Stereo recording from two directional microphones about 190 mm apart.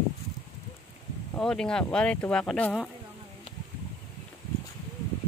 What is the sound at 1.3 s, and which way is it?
Speech, 5° left (ahead or behind).